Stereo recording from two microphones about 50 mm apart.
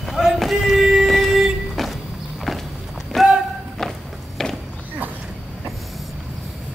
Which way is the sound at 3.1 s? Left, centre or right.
Centre.